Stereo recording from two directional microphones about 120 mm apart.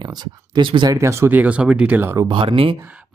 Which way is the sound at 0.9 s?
25° right (ahead or behind).